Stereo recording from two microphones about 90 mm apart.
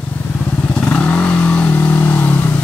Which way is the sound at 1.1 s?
15° left (ahead or behind).